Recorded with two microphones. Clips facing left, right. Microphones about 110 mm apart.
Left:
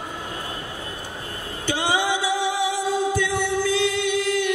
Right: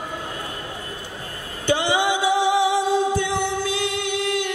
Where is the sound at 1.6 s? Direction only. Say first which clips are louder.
Right 3 dB; 20° right (ahead or behind).